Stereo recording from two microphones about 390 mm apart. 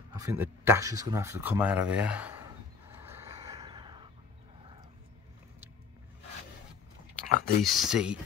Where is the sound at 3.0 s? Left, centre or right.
Centre.